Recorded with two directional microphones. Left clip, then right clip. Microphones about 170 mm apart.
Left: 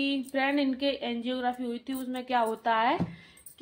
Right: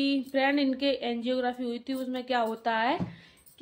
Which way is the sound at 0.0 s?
25° right (ahead or behind).